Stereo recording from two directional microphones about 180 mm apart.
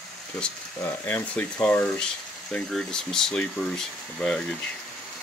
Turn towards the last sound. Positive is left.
turn(degrees=5)  # may be behind; listen again after turning